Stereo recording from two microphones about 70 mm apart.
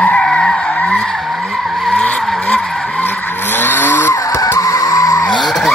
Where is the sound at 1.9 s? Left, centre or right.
Centre.